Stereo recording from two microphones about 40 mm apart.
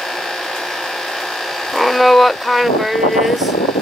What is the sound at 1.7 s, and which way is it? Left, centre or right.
Speech, centre.